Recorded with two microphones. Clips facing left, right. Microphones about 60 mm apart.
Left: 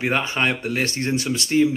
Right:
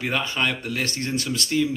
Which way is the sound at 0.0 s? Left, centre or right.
Left.